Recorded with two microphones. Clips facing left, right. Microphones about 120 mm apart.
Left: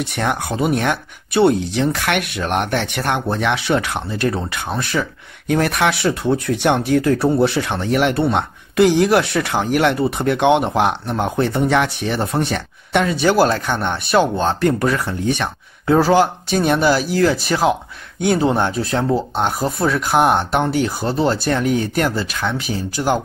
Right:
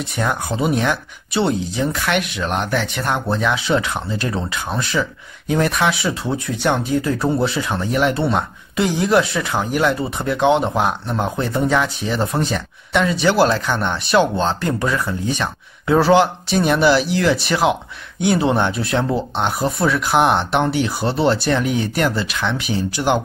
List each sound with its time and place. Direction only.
0.0 s speech: 70° left (ahead or behind)
0.7 s speech: 50° left (ahead or behind)
5.5 s speech: 60° left (ahead or behind)
13.0 s speech: 45° left (ahead or behind)
16.0 s speech: 45° left (ahead or behind)
19.0 s speech: 5° left (ahead or behind)
19.8 s speech: 45° left (ahead or behind)